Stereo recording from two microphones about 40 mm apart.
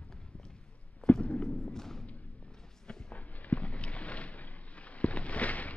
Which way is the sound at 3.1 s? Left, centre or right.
Left.